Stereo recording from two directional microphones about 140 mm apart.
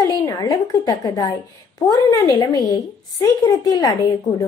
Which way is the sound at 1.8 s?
25° left (ahead or behind).